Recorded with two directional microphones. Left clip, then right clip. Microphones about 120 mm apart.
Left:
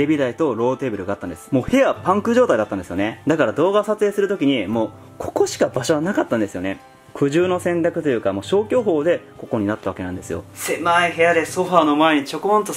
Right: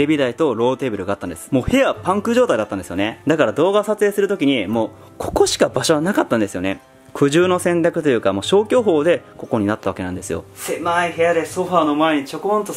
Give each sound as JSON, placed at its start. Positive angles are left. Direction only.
{"t": 0.0, "sound": "speech", "side_deg": -15}
{"t": 10.6, "sound": "a man's voice", "side_deg": 0}